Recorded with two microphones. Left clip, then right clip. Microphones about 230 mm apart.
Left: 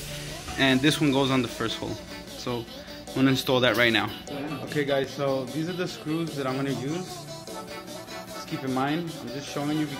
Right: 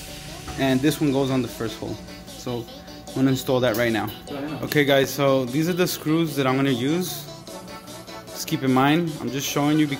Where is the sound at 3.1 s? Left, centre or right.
Centre.